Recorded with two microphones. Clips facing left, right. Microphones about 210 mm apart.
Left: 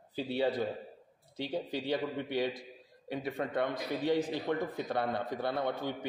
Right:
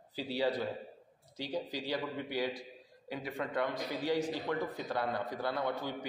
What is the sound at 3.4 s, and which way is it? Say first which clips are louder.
A man's voice: even; 55° left (ahead or behind).